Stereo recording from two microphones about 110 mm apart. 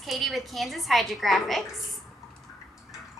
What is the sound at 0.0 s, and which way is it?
A woman's voice, centre (ahead or behind).